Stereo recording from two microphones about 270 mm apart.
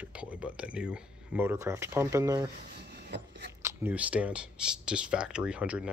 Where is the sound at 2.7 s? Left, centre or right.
Right.